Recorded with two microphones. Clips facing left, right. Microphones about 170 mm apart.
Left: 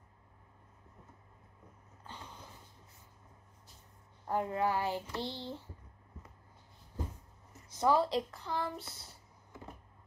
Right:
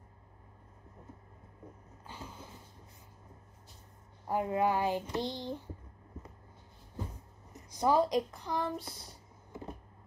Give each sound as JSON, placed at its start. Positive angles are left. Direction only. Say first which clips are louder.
{"t": 2.0, "sound": "a sound", "louder": "right 3 dB", "side_deg": -5}
{"t": 4.3, "sound": "speech", "louder": "right 2 dB", "side_deg": -15}
{"t": 7.5, "sound": "a woman's voice", "louder": "right 1 dB", "side_deg": -15}